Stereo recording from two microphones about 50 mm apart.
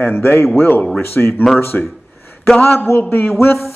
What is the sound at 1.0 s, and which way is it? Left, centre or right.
Speech, left.